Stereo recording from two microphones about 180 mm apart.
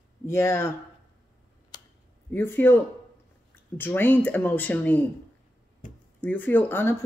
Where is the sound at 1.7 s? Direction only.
25° left (ahead or behind).